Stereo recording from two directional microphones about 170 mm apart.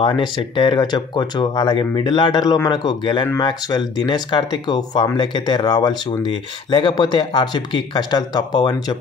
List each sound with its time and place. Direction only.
0.0 s speech: 30° left (ahead or behind)